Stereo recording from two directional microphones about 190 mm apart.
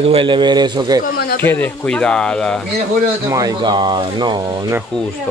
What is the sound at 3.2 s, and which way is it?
Speech, 20° right (ahead or behind).